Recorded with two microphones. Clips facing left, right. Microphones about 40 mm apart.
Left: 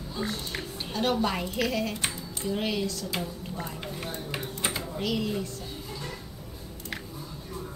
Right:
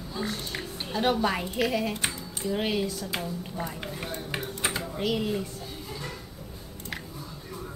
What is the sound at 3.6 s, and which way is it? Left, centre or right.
Speech, centre.